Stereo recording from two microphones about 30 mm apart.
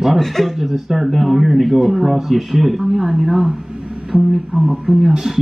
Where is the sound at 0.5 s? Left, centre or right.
Centre.